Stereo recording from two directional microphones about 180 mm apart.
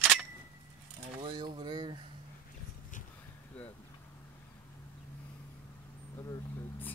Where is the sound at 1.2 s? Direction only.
25° right (ahead or behind).